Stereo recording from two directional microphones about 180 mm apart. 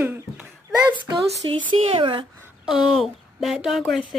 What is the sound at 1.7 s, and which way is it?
Speech, 30° right (ahead or behind).